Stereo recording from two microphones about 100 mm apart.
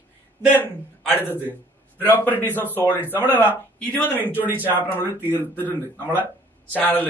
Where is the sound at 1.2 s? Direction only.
20° left (ahead or behind).